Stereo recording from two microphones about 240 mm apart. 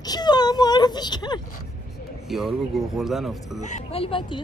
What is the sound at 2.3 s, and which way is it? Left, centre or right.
Speech, centre.